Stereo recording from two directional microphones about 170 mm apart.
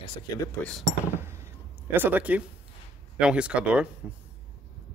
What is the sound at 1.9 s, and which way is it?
Speech, 10° right (ahead or behind).